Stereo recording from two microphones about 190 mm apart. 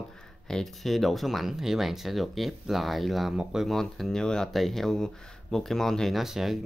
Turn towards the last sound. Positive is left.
turn(degrees=0)  # may be behind; listen again after turning